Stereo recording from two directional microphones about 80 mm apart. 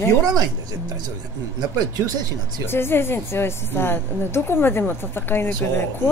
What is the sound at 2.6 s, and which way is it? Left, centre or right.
Speech, left.